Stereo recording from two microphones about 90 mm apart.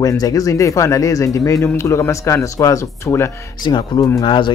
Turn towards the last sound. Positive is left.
turn(degrees=65)  # may be behind; listen again after turning